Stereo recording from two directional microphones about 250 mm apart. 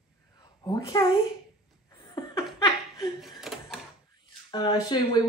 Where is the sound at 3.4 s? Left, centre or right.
Centre.